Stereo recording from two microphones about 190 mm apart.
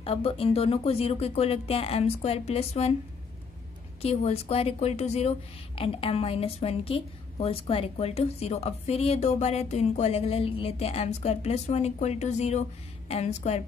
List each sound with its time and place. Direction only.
0.0 s a woman's voice: 30° left (ahead or behind)
4.0 s a woman's voice: 35° left (ahead or behind)